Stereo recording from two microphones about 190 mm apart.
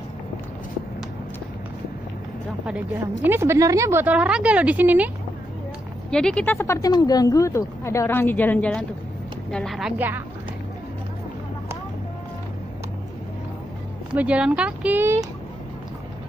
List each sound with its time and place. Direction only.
2.6 s a woman's voice: 10° right (ahead or behind)
6.0 s a woman's voice: 5° left (ahead or behind)
14.1 s a woman's voice: 5° right (ahead or behind)